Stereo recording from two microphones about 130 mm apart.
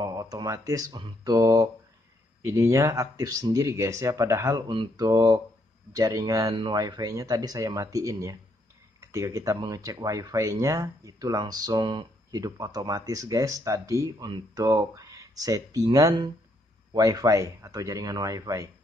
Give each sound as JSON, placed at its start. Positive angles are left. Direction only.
{"t": 0.0, "sound": "speech", "side_deg": -30}
{"t": 4.6, "sound": "speech", "side_deg": -35}
{"t": 6.4, "sound": "speech", "side_deg": -40}
{"t": 6.7, "sound": "speech", "side_deg": -30}